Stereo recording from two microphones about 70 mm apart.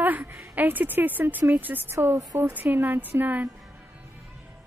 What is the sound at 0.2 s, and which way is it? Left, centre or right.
Speech, right.